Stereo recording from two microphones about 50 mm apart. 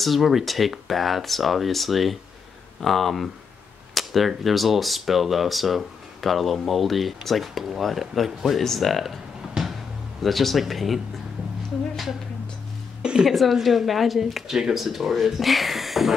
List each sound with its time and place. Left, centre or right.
0.0 s speech: centre
10.2 s speech: centre
13.2 s speech: centre